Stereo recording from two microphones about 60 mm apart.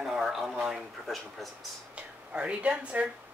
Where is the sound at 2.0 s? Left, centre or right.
Right.